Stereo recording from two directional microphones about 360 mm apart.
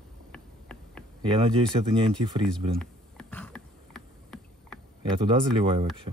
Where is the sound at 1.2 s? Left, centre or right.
Centre.